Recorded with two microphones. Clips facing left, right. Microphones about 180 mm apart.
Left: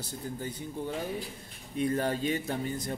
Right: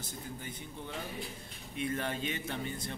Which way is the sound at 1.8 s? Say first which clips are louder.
Left 6 dB; 35° left (ahead or behind).